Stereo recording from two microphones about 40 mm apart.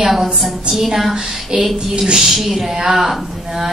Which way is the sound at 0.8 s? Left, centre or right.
Centre.